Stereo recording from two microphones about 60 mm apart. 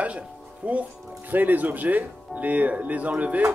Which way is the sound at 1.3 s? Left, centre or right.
Right.